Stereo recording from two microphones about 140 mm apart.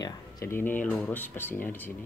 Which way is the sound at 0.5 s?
15° left (ahead or behind).